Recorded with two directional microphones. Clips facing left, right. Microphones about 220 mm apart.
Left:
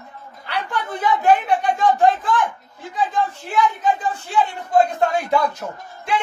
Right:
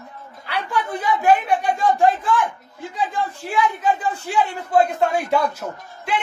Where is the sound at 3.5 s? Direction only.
10° right (ahead or behind).